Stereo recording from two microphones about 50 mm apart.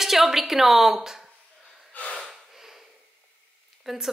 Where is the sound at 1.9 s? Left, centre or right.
Left.